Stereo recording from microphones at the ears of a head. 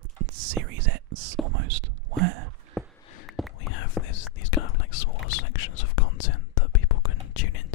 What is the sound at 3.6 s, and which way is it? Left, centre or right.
Whispering, left.